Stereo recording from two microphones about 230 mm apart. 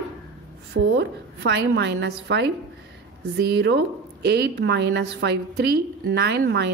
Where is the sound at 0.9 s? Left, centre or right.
Right.